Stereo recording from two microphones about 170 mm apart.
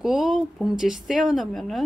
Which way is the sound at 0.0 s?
Centre (ahead or behind).